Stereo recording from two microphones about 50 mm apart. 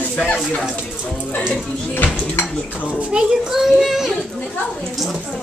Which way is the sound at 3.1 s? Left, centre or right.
Centre.